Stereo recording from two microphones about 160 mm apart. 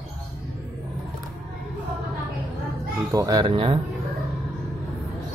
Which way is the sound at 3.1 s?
25° right (ahead or behind).